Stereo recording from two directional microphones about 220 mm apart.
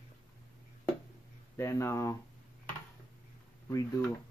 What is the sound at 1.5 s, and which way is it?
Speech, 15° left (ahead or behind).